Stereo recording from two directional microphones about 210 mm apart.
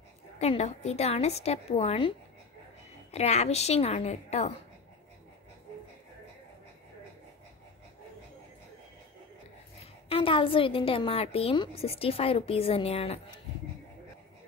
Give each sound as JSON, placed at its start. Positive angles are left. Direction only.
{"t": 0.4, "sound": "a woman's voice", "side_deg": 30}
{"t": 10.0, "sound": "a woman's voice", "side_deg": 25}